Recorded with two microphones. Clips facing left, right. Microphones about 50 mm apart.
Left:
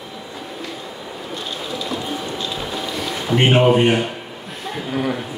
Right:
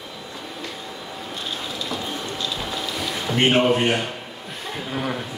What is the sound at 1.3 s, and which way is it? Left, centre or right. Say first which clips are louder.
Music: left 3 dB; centre.